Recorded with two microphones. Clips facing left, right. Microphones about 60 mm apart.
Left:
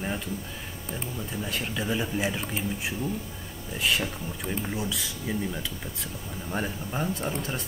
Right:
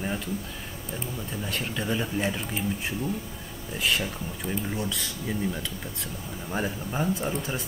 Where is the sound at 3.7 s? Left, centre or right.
Centre.